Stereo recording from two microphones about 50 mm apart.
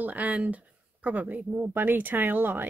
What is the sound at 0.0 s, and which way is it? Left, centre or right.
Speech, right.